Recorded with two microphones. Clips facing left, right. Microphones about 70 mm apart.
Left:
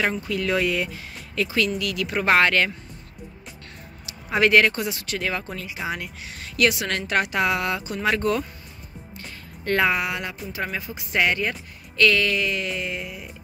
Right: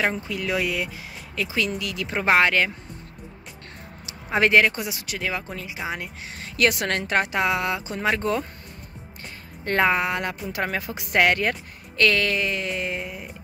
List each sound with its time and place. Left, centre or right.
0.3 s speech: centre
1.8 s speech: right
4.0 s a sound: right
4.7 s speech: centre
6.7 s a woman's voice: right
7.1 s speech: right
9.7 s music: right
10.8 s speech: right
12.0 s music: right